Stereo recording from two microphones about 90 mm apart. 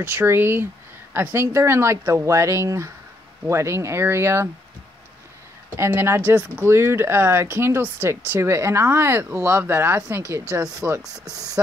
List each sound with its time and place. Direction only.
0.0 s speech: 20° right (ahead or behind)
5.8 s speech: 30° right (ahead or behind)
10.5 s speech: 35° right (ahead or behind)